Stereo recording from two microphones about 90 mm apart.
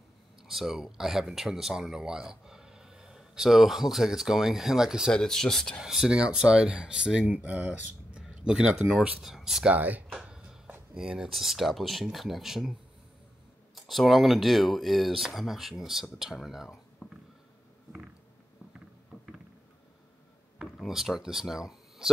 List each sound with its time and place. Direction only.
0.5 s speech: 5° right (ahead or behind)
5.1 s speech: 5° left (ahead or behind)
9.8 s speech: 20° right (ahead or behind)
10.1 s a sound: 10° right (ahead or behind)
11.0 s speech: 5° right (ahead or behind)
13.7 s speech: centre (ahead or behind)
20.7 s speech: centre (ahead or behind)